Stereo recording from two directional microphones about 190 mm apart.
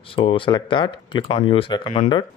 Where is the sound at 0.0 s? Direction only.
25° left (ahead or behind).